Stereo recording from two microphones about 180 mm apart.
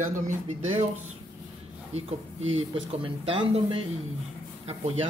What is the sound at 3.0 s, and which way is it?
Speech, 30° right (ahead or behind).